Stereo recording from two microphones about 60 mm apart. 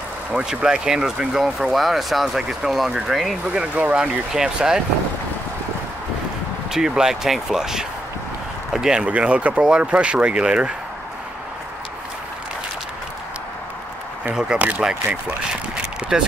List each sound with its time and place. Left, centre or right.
0.3 s speech: centre
3.8 s speech: right
4.3 s speech: centre
6.7 s speech: centre
14.8 s speech: centre
15.7 s a sound: centre